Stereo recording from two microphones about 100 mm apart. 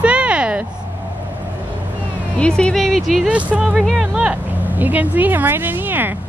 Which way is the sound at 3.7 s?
Centre (ahead or behind).